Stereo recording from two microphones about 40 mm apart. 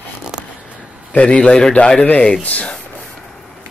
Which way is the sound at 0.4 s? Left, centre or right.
Centre.